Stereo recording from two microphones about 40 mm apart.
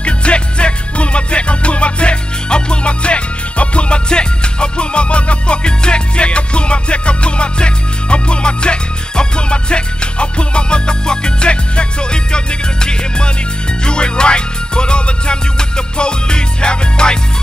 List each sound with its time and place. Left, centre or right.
0.0 s music: left